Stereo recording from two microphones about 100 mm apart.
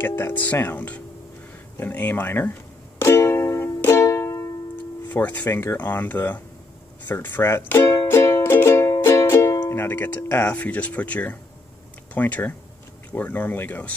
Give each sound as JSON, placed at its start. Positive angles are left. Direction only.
{"t": 0.0, "sound": "speech", "side_deg": 20}
{"t": 3.0, "sound": "music", "side_deg": 25}
{"t": 5.1, "sound": "speech", "side_deg": 15}
{"t": 7.1, "sound": "music", "side_deg": 20}
{"t": 9.7, "sound": "speech", "side_deg": 20}